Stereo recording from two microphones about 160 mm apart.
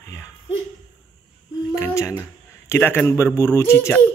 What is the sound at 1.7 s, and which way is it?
Speech, 15° left (ahead or behind).